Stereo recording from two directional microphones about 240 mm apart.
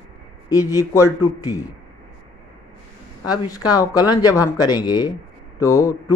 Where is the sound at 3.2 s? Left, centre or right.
Centre.